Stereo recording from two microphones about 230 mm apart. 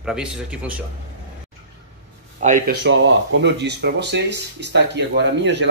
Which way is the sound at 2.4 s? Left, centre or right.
Right.